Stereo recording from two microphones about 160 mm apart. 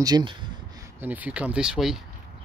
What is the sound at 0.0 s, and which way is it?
Speech, 30° right (ahead or behind).